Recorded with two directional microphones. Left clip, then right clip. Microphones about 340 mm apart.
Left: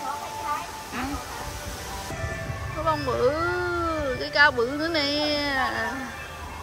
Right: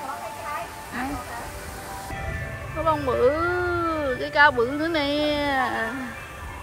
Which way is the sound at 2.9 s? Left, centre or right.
Centre.